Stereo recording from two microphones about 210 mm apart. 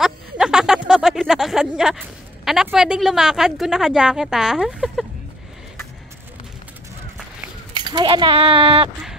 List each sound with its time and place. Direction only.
0.0 s speech: 5° right (ahead or behind)
7.7 s speech: 20° right (ahead or behind)